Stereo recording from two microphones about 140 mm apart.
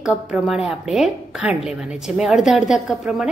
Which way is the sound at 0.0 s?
5° right (ahead or behind).